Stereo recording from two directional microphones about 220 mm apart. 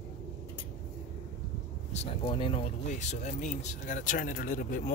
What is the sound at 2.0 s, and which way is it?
Speech, 25° left (ahead or behind).